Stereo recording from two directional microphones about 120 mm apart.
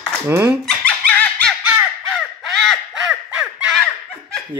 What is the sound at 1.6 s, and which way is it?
Music, 10° right (ahead or behind).